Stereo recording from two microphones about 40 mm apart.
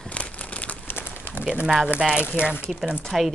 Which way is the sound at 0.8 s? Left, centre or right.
Left.